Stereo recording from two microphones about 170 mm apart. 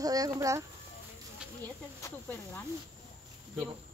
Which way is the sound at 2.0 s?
15° left (ahead or behind).